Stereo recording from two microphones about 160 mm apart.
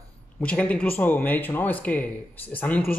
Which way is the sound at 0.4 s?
10° left (ahead or behind).